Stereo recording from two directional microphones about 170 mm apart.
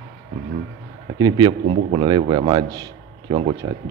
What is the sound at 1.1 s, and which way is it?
A man's voice, 25° right (ahead or behind).